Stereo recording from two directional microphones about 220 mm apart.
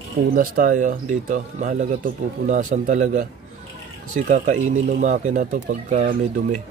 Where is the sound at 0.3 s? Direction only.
40° right (ahead or behind).